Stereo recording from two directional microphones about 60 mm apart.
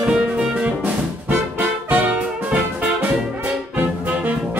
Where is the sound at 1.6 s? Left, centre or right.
Right.